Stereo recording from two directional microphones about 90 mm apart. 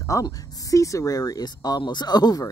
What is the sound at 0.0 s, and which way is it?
Speech, 40° left (ahead or behind).